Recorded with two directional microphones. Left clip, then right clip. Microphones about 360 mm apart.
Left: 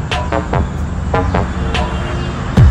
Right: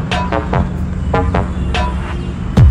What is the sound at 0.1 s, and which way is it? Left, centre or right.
Music, centre.